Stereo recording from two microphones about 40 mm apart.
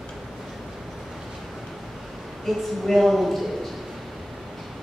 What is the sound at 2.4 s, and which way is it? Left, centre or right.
Speech, centre.